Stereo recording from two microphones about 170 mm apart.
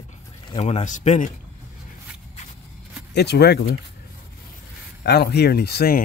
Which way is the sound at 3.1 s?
80° left.